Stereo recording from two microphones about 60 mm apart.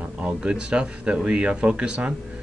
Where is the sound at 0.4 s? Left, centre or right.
Centre.